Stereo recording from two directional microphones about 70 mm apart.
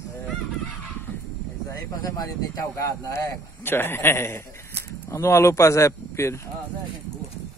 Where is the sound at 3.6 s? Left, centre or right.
Left.